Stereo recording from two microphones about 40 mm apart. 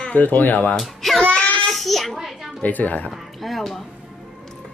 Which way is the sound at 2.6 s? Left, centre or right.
Left.